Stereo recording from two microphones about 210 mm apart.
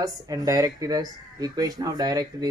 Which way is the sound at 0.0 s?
15° right (ahead or behind).